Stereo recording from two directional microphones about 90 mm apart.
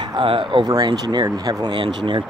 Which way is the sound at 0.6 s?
50° right (ahead or behind).